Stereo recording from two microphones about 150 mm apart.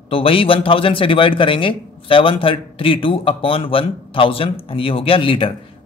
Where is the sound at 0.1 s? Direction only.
40° left (ahead or behind).